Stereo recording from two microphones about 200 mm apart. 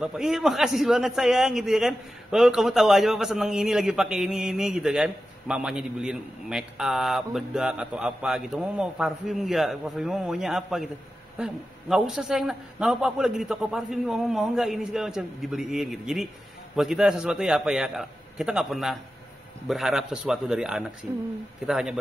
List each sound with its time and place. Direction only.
0.0 s a man's voice: 5° right (ahead or behind)
21.6 s a man's voice: centre (ahead or behind)